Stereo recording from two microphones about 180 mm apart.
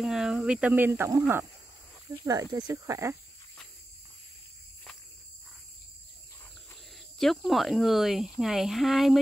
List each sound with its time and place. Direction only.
0.0 s speech: centre (ahead or behind)
6.9 s speech: centre (ahead or behind)